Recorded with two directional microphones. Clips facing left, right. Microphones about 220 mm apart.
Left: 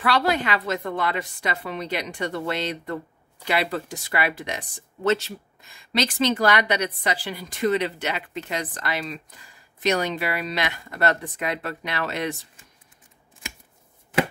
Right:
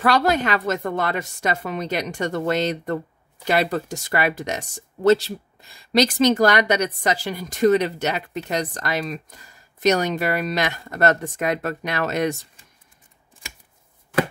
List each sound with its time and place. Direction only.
0.0 s speech: 45° right (ahead or behind)